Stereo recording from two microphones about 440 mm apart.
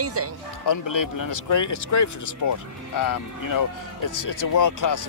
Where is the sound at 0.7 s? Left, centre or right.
Left.